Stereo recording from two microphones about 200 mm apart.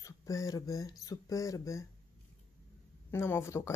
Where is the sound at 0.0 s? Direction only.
15° left (ahead or behind).